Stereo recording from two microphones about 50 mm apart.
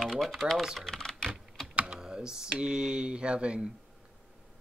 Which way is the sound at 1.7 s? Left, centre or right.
Centre.